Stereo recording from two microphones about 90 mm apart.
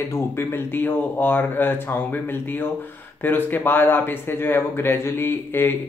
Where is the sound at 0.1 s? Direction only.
30° left (ahead or behind).